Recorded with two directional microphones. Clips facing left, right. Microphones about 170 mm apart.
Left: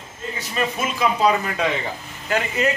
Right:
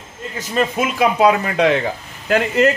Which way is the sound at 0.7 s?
65° right (ahead or behind).